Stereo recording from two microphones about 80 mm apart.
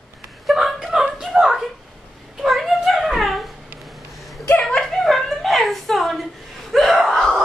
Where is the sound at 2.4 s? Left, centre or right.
Centre.